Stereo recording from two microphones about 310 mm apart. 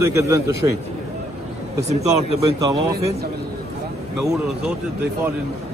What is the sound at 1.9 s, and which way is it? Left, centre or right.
Speech, right.